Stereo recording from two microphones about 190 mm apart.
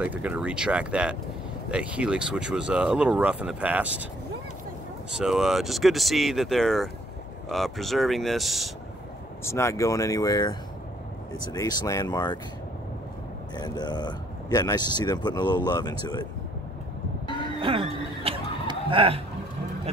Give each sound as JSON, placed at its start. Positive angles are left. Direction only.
{"t": 0.0, "sound": "speech", "side_deg": -5}
{"t": 5.1, "sound": "speech", "side_deg": -5}
{"t": 9.4, "sound": "speech", "side_deg": 15}
{"t": 11.5, "sound": "speech", "side_deg": 20}
{"t": 13.6, "sound": "speech", "side_deg": 20}
{"t": 17.6, "sound": "a sound", "side_deg": -30}